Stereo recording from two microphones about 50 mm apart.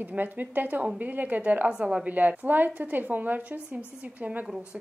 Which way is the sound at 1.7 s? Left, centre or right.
Right.